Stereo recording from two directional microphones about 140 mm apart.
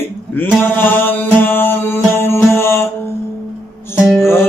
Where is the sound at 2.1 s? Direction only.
15° left (ahead or behind).